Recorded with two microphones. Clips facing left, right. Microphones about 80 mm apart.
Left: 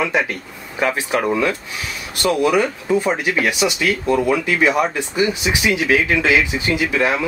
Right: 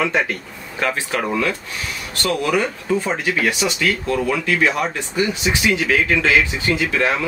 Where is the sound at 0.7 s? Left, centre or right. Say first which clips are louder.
Left 3 dB; centre.